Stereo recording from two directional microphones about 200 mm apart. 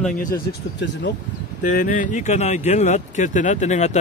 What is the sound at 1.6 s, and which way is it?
Speech, 45° left (ahead or behind).